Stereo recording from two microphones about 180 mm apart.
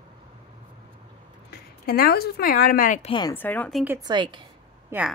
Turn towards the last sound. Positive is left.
turn(degrees=-10)  # may be behind; listen again after turning